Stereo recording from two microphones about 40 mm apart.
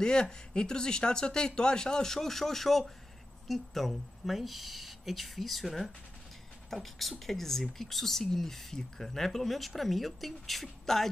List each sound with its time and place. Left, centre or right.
0.0 s speech: centre